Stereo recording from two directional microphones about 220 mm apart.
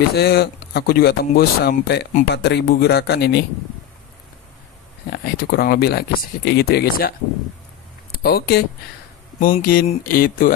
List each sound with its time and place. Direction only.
0.1 s speech: 45° left (ahead or behind)
5.1 s speech: 45° left (ahead or behind)
9.4 s a sound: 40° left (ahead or behind)